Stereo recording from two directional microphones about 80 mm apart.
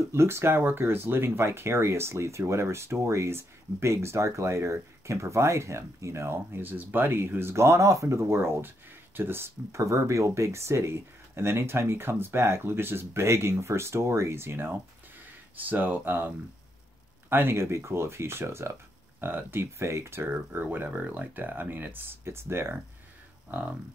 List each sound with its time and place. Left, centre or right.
0.1 s speech: right